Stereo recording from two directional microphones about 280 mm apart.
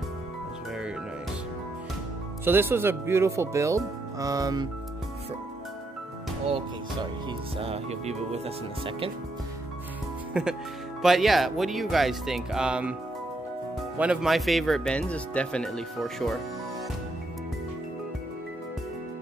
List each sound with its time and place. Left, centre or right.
2.4 s speech: centre
6.5 s speech: centre
10.3 s speech: centre
13.9 s speech: centre